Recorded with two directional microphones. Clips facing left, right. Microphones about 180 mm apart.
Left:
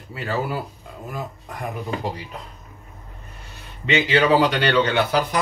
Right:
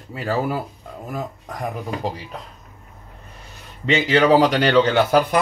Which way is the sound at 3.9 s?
40° right (ahead or behind).